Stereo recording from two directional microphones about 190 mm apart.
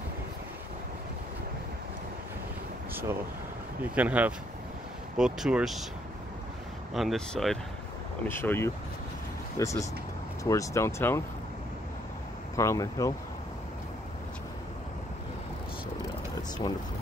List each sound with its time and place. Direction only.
2.9 s a sound: 10° right (ahead or behind)
3.8 s speech: 10° right (ahead or behind)
6.9 s speech: centre (ahead or behind)
8.3 s speech: 10° left (ahead or behind)
12.5 s speech: 15° left (ahead or behind)